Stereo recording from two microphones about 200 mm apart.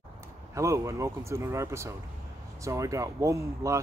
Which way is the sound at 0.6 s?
15° right (ahead or behind).